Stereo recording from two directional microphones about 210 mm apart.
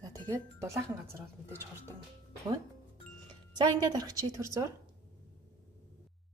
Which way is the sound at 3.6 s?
20° right (ahead or behind).